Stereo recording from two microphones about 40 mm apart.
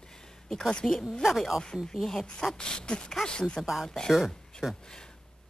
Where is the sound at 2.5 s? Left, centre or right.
Left.